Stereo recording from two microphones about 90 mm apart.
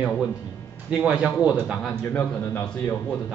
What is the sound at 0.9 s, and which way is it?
Speech, 15° right (ahead or behind).